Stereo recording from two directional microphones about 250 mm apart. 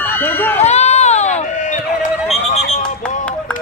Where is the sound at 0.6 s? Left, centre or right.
Left.